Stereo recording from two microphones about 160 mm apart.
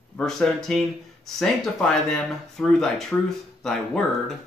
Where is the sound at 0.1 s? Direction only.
5° left (ahead or behind).